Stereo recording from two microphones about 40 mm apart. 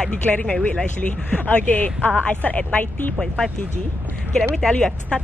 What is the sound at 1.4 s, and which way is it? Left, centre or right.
A woman's voice, left.